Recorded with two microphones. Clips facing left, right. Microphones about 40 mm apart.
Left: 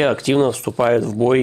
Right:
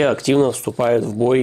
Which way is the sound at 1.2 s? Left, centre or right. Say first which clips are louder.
Left 1 dB; centre.